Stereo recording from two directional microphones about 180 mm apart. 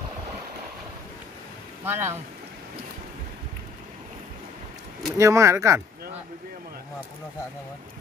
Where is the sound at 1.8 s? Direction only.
10° right (ahead or behind).